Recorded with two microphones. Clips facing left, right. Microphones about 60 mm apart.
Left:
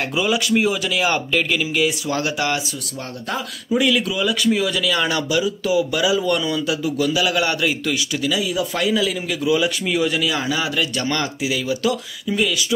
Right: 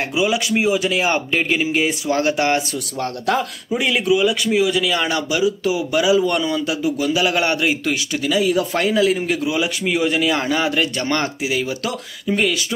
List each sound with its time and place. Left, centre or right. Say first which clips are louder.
0.1 s speech: even; centre; by 2.6 s right
3.0 s a man's voice: right 7 dB; right
3.7 s speech: right 1 dB; right